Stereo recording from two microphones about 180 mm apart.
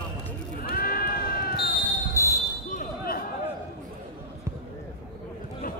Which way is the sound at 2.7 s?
45° left (ahead or behind).